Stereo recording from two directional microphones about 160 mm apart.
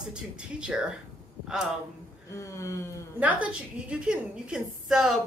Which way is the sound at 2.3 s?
20° left (ahead or behind).